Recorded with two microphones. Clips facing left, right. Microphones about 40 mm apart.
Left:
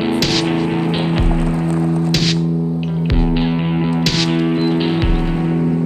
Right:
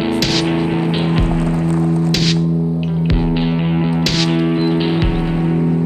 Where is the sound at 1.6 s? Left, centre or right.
Right.